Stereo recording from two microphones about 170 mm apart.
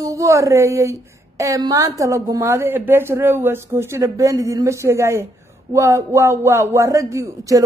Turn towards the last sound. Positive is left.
turn(degrees=-20)  # may be behind; listen again after turning